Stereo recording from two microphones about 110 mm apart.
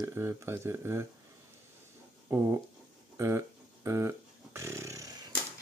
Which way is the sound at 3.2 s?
25° right (ahead or behind).